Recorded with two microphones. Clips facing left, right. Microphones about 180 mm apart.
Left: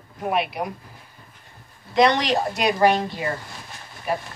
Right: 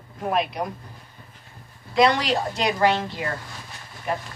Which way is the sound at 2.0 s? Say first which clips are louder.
Left 1 dB; 20° left (ahead or behind).